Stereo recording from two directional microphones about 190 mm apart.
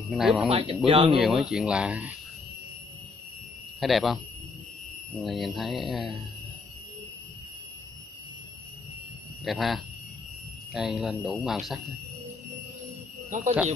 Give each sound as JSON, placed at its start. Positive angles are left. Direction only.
{"t": 0.1, "sound": "speech", "side_deg": 0}
{"t": 0.5, "sound": "speech", "side_deg": -30}
{"t": 1.2, "sound": "speech", "side_deg": -5}
{"t": 3.8, "sound": "speech", "side_deg": 0}
{"t": 5.2, "sound": "speech", "side_deg": 0}
{"t": 9.4, "sound": "speech", "side_deg": 0}
{"t": 13.3, "sound": "speech", "side_deg": -40}